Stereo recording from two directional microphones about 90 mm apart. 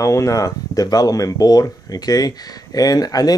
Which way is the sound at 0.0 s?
35° left (ahead or behind).